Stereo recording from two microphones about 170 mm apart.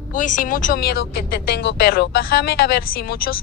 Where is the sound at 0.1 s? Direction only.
50° left (ahead or behind).